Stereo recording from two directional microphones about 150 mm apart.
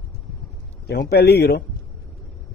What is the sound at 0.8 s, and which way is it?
Speech, 90° left.